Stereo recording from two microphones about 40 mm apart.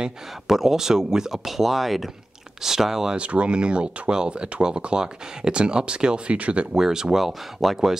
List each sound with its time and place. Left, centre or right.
0.5 s speech: centre
3.2 s speech: right
6.7 s speech: centre